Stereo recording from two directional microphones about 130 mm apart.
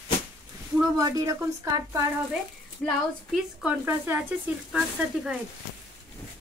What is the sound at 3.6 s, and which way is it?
Speech, 15° right (ahead or behind).